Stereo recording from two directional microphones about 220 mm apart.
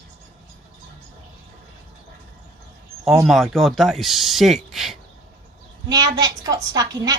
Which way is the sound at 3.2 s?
Centre (ahead or behind).